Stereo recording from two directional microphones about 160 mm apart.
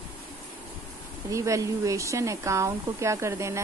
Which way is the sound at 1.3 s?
20° right (ahead or behind).